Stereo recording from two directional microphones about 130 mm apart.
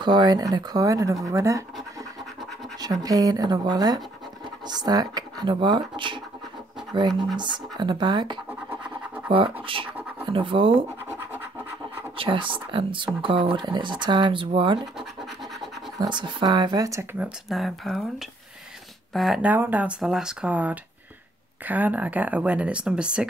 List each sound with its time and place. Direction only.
0.0 s speech: 35° right (ahead or behind)
2.8 s speech: 30° right (ahead or behind)
8.5 s scratch: 15° right (ahead or behind)
9.3 s speech: 40° right (ahead or behind)
11.1 s scratch: 15° right (ahead or behind)
12.2 s speech: 40° right (ahead or behind)
16.0 s speech: 35° right (ahead or behind)
17.2 s speech: centre (ahead or behind)
19.1 s speech: centre (ahead or behind)
19.4 s speech: 15° right (ahead or behind)